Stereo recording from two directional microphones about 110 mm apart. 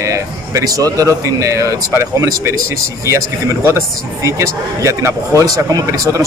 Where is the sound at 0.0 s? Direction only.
30° right (ahead or behind).